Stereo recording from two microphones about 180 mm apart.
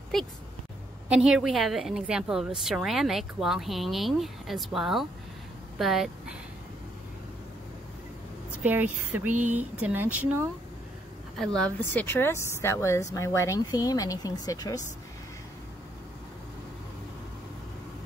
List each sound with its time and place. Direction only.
0.1 s a woman's voice: centre (ahead or behind)
8.6 s speech: 10° right (ahead or behind)
11.3 s a woman's voice: centre (ahead or behind); by 14.8 s 20° left (ahead or behind)